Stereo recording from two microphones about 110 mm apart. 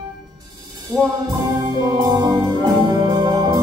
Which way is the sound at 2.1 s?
40° right (ahead or behind).